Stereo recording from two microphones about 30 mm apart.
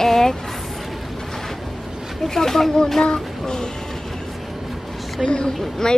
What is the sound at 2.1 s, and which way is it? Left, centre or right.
A child's voice, centre.